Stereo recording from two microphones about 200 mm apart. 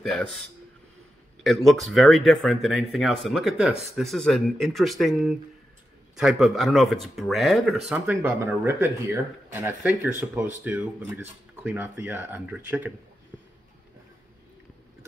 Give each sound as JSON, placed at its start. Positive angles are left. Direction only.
{"t": 1.4, "sound": "speech", "side_deg": 0}